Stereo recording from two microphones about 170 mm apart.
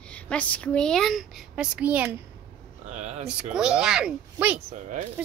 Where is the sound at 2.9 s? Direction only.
40° right (ahead or behind).